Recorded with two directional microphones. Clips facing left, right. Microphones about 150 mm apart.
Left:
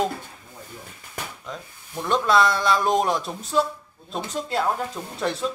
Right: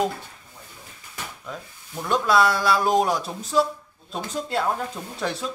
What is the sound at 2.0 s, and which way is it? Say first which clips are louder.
Speech: even; 10° right (ahead or behind).